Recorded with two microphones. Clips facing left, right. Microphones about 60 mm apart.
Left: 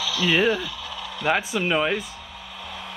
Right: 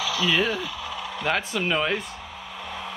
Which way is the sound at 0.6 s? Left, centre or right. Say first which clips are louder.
Right 1 dB; right.